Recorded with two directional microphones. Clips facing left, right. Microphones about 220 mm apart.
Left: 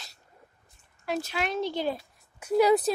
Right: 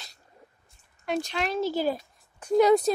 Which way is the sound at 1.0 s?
5° left (ahead or behind).